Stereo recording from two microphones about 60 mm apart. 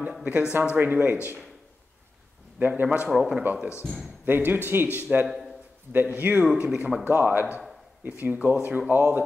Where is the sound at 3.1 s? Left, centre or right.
Centre.